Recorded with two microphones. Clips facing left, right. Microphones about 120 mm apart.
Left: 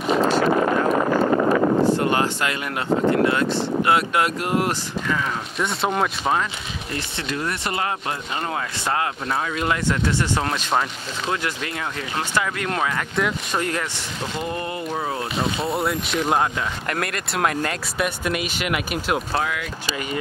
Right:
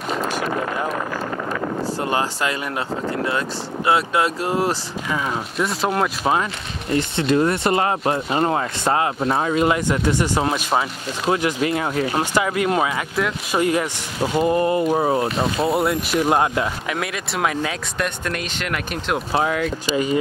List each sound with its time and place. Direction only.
0.2 s a sound: 40° left (ahead or behind)
1.1 s a sound: 50° left (ahead or behind)
3.8 s speech: 30° right (ahead or behind)
5.6 s speech: centre (ahead or behind)
6.9 s speech: 30° right (ahead or behind)
9.8 s speech: 15° right (ahead or behind)
11.6 s speech: 30° right (ahead or behind)
12.2 s speech: 10° right (ahead or behind)
14.4 s speech: 30° right (ahead or behind)
15.2 s speech: centre (ahead or behind)
19.3 s speech: 35° right (ahead or behind)